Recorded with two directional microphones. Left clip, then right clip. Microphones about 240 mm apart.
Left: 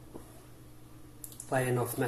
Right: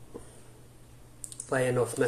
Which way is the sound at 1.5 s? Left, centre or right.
Centre.